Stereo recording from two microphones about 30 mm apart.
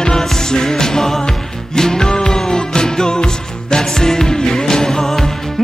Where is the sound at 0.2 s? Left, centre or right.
Centre.